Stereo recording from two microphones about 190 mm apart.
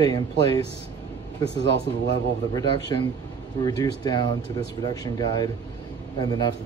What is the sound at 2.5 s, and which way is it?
Speech, 25° left (ahead or behind).